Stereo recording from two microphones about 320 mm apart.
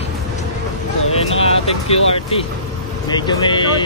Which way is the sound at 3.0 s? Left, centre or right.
Centre.